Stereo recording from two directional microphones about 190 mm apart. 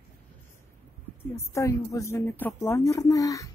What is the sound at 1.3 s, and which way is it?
Speech, 15° left (ahead or behind).